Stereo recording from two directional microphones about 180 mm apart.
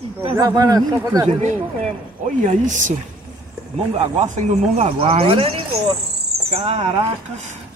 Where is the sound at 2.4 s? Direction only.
45° right (ahead or behind).